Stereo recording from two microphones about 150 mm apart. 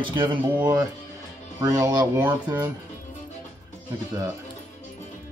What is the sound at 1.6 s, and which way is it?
Speech, 20° right (ahead or behind).